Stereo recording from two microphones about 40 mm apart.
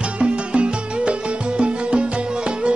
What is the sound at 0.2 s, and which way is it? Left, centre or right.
Music, right.